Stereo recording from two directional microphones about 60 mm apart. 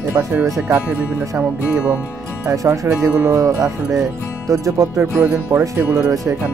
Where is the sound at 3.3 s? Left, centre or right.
Right.